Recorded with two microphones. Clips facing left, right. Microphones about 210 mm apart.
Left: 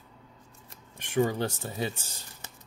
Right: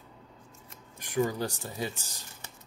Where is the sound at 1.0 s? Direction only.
25° left (ahead or behind).